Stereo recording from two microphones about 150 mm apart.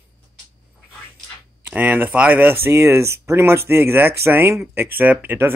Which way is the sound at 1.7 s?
10° right (ahead or behind).